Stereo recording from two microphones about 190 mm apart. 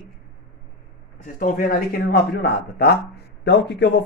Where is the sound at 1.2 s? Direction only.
45° left (ahead or behind).